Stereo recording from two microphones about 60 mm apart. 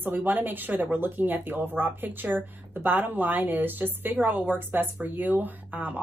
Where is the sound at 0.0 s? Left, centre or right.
Right.